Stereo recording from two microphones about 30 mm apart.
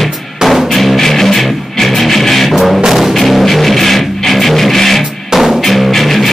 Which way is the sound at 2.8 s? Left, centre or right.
Centre.